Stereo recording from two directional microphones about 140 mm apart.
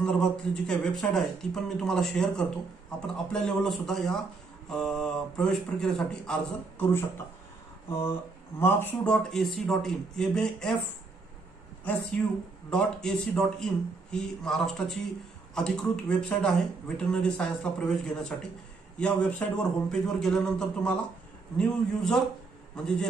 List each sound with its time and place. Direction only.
0.0 s speech: 5° left (ahead or behind)
11.9 s speech: 10° left (ahead or behind)